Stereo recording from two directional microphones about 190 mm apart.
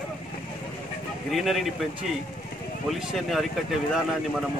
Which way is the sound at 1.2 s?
Centre (ahead or behind).